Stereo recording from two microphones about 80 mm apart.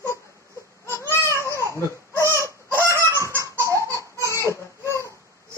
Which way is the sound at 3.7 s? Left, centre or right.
Right.